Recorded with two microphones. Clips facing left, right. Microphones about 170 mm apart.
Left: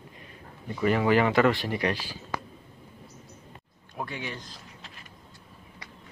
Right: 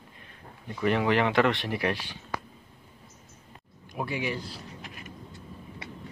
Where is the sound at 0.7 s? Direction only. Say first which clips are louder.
Left 2 dB; 5° left (ahead or behind).